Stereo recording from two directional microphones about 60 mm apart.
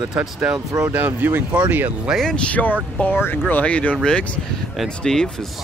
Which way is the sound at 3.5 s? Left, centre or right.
Left.